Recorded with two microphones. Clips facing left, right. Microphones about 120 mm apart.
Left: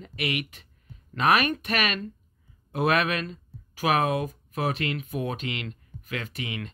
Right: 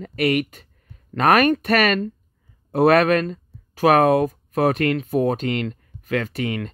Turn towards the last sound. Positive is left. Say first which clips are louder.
# right 9 dB
turn(degrees=-45)  # may be behind; listen again after turning